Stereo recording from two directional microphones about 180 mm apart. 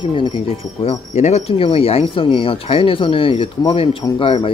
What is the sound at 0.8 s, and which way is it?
Speech, 40° left (ahead or behind).